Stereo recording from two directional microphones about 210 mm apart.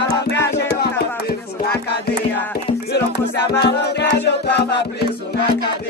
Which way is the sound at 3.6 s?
50° left (ahead or behind).